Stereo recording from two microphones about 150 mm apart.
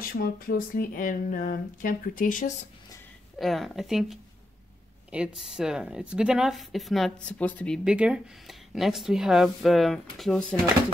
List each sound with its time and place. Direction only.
0.1 s speech: 85° left; by 2.5 s 65° left (ahead or behind)
3.3 s speech: centre (ahead or behind)
7.8 s speech: 5° right (ahead or behind)